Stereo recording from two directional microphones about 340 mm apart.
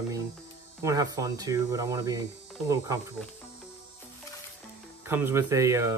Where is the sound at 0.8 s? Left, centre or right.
Centre.